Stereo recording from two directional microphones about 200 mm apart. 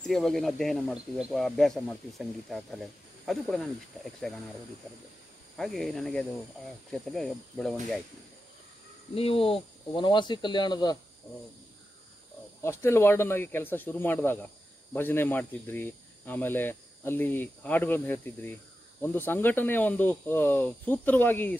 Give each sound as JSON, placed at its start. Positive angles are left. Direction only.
{"t": 0.0, "sound": "speech", "side_deg": 0}
{"t": 5.6, "sound": "speech", "side_deg": 0}
{"t": 9.1, "sound": "speech", "side_deg": 30}
{"t": 12.6, "sound": "speech", "side_deg": 10}